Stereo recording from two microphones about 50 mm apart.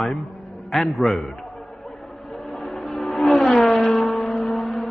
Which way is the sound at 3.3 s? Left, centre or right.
Centre.